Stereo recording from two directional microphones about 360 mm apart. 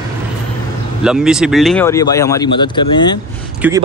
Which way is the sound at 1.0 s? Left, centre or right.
Centre.